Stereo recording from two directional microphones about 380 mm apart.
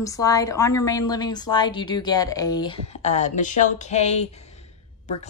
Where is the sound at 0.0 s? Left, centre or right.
Centre.